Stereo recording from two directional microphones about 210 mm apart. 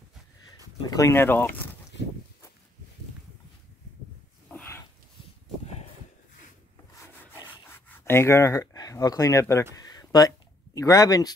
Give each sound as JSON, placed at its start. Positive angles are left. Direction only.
{"t": 0.8, "sound": "speech", "side_deg": 15}
{"t": 4.5, "sound": "dog", "side_deg": 10}
{"t": 8.0, "sound": "speech", "side_deg": 10}
{"t": 9.8, "sound": "a sound", "side_deg": 20}